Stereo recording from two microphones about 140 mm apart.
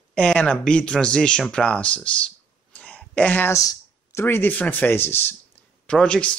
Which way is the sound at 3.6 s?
20° left (ahead or behind).